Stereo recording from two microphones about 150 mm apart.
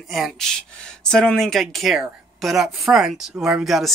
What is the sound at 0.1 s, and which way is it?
Speech, centre (ahead or behind).